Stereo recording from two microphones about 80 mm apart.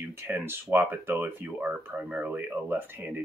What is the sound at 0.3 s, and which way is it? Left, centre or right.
Speech, right.